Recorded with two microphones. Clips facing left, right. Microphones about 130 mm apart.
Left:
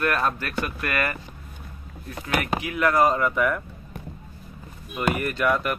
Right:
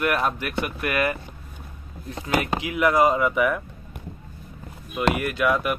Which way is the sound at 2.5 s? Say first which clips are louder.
Right 1 dB; 20° right (ahead or behind).